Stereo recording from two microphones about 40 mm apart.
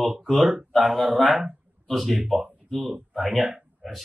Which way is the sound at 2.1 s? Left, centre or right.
Centre.